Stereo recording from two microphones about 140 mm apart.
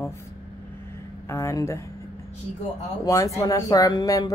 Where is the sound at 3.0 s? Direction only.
20° left (ahead or behind).